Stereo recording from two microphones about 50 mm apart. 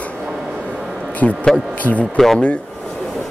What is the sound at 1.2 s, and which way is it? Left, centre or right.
Speech, left.